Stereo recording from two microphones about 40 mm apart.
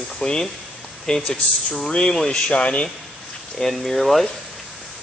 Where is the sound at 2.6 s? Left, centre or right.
Left.